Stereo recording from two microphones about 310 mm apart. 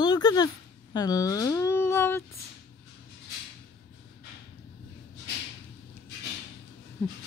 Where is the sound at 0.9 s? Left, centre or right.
Centre.